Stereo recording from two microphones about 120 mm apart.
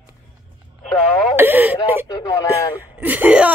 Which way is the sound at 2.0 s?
30° left (ahead or behind).